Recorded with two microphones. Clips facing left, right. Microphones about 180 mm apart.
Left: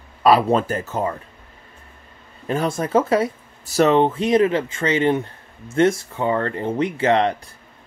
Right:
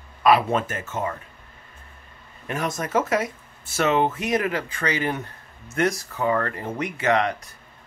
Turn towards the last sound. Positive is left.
turn(degrees=30)  # may be behind; listen again after turning